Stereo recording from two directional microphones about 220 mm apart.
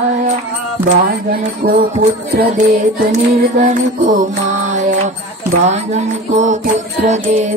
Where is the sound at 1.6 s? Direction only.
50° right (ahead or behind).